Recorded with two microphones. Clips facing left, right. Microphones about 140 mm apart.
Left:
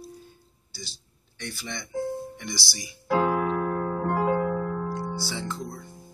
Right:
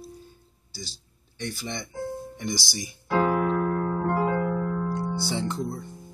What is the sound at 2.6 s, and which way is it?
Speech, 50° right (ahead or behind).